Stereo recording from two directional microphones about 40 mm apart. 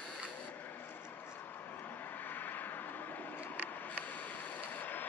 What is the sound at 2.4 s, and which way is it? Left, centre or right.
Vehicle, left.